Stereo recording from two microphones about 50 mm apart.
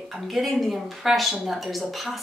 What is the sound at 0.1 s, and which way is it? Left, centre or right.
A woman's voice, centre.